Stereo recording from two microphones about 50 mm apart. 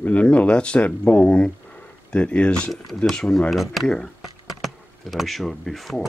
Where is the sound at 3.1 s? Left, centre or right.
Centre.